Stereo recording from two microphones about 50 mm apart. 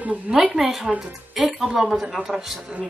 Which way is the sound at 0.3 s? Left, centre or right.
Centre.